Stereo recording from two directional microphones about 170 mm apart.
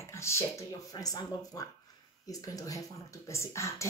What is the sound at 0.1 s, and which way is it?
Speech, 15° left (ahead or behind).